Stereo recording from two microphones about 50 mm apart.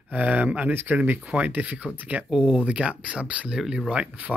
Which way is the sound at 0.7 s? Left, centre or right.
Right.